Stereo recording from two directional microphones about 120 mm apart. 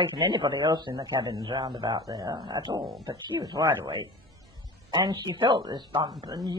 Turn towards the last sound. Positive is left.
turn(degrees=-35)  # may be behind; listen again after turning